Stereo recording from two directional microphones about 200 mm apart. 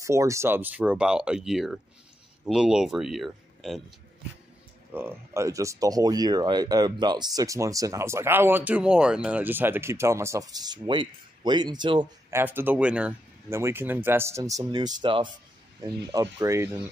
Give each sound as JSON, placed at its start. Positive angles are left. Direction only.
{"t": 0.0, "sound": "speech", "side_deg": -15}
{"t": 4.9, "sound": "speech", "side_deg": -10}
{"t": 12.4, "sound": "speech", "side_deg": -10}